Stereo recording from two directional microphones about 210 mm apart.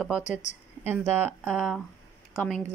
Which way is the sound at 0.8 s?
10° right (ahead or behind).